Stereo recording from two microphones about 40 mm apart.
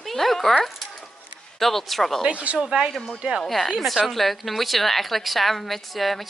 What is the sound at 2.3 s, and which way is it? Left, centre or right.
Speech, right.